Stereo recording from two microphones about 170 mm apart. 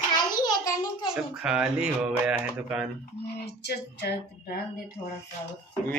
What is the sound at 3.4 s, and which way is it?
Speech, 75° left (ahead or behind).